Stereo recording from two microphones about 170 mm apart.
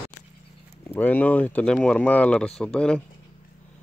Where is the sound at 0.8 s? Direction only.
10° left (ahead or behind).